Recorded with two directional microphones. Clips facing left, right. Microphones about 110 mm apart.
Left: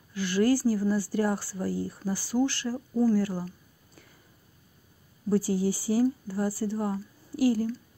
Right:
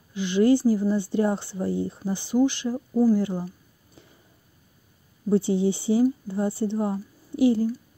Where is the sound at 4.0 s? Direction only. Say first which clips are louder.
Right 3 dB; 25° right (ahead or behind).